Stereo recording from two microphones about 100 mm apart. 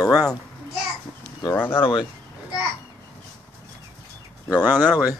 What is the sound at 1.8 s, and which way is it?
Speech, 50° left (ahead or behind).